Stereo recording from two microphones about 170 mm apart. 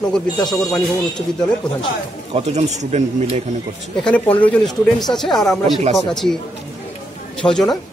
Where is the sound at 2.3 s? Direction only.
40° right (ahead or behind).